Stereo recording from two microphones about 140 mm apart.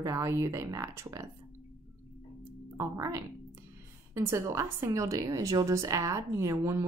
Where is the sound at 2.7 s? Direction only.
25° right (ahead or behind).